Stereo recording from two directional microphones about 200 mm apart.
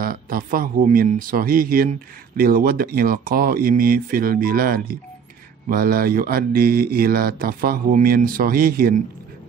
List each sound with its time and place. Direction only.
0.0 s speech: 45° right (ahead or behind)